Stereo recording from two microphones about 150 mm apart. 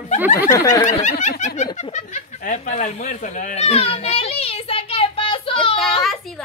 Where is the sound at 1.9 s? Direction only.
55° left (ahead or behind); by 5.7 s 35° left (ahead or behind).